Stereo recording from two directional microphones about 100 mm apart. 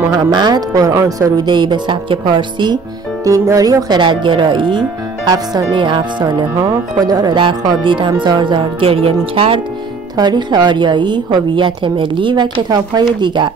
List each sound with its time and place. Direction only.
0.1 s a woman's voice: 45° right (ahead or behind)
3.3 s speech: 35° right (ahead or behind)
4.0 s a woman's voice: 55° right (ahead or behind)
7.3 s a woman's voice: 55° right (ahead or behind)
10.1 s a woman's voice: 45° right (ahead or behind)